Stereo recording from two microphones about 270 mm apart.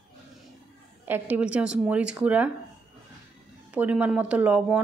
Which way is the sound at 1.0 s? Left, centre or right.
Centre.